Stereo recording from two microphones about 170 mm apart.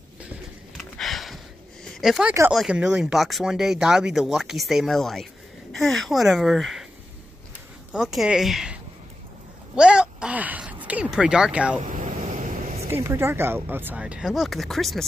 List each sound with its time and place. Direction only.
0.7 s a sound: centre (ahead or behind)
2.0 s speech: centre (ahead or behind)
7.9 s speech: centre (ahead or behind)
9.8 s a sound: 5° right (ahead or behind)
11.8 s vehicle: 50° right (ahead or behind)
12.8 s speech: 15° right (ahead or behind); by 15.0 s centre (ahead or behind)